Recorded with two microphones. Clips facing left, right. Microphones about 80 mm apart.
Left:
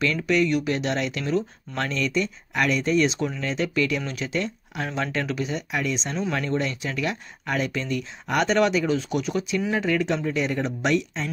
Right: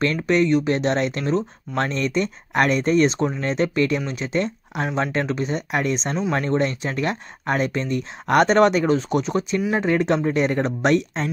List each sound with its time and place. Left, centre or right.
0.0 s speech: right
4.0 s speech: right
8.3 s speech: right